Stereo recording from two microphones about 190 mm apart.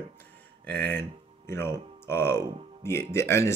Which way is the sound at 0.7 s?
10° left (ahead or behind).